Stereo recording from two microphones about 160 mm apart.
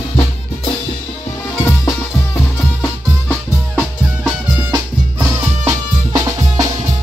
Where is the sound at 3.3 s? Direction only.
5° left (ahead or behind).